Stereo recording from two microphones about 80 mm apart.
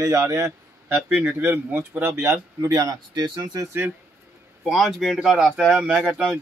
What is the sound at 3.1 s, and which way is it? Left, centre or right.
Speech, right.